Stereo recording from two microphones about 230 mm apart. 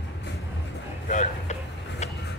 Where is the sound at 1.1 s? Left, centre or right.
Left.